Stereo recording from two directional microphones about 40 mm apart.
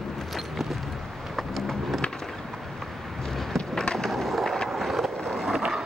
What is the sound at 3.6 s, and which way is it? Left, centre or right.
Skateboard, left.